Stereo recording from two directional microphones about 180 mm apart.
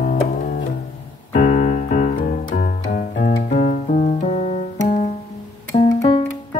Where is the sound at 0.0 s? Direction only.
50° left (ahead or behind).